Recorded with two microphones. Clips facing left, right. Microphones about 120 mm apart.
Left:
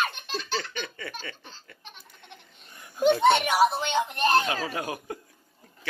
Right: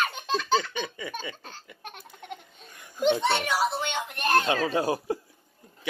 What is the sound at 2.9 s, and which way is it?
Speech, 10° left (ahead or behind).